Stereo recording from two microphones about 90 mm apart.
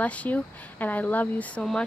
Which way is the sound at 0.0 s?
20° left (ahead or behind).